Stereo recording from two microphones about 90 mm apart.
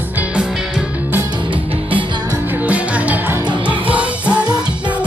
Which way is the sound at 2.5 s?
15° right (ahead or behind).